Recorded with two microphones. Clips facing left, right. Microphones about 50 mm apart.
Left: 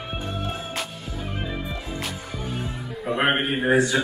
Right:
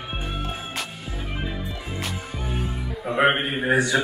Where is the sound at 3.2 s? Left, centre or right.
Centre.